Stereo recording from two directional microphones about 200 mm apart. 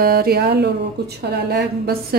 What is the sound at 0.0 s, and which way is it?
A woman's voice, 50° right (ahead or behind).